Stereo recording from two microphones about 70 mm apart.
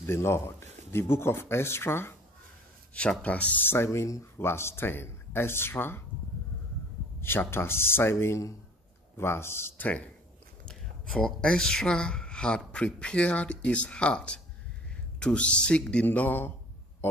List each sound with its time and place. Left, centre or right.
0.0 s speech: left
2.9 s speech: centre
3.6 s speech: left
7.2 s a man's voice: left
10.6 s speech: centre
16.1 s speech: left